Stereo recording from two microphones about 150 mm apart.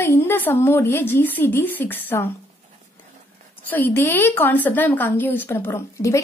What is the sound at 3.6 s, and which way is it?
A woman's voice, 15° left (ahead or behind).